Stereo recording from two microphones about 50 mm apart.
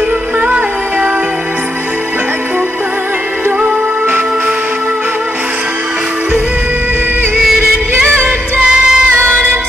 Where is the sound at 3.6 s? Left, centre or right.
Right.